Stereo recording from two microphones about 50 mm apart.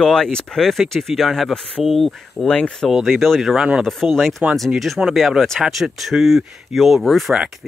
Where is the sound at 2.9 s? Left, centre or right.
Centre.